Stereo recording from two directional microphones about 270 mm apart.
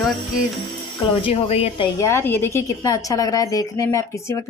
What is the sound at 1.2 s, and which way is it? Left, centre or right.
Speech, left.